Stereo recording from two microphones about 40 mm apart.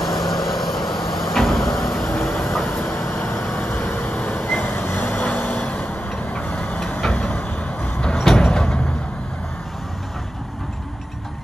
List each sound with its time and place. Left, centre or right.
0.0 s vehicle: centre
3.5 s vehicle: left
4.9 s vehicle: left
5.7 s vehicle: left
8.2 s vehicle: centre